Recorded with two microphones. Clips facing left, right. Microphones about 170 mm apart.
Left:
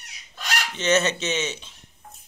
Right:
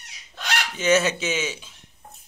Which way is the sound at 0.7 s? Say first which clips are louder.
Right 2 dB; 10° right (ahead or behind).